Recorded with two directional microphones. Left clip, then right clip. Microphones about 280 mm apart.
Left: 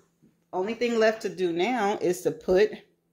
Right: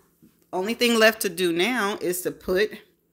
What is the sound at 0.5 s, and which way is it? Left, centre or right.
Speech, right.